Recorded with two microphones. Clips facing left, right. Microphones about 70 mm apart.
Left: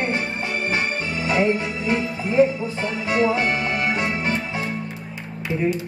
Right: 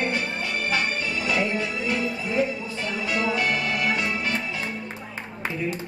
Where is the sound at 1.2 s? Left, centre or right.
Left.